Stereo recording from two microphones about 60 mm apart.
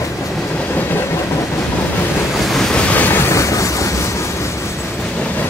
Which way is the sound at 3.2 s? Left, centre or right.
Left.